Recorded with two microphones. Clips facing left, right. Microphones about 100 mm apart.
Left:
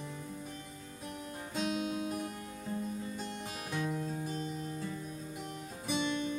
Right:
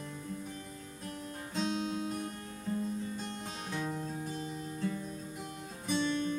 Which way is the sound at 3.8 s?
30° right (ahead or behind).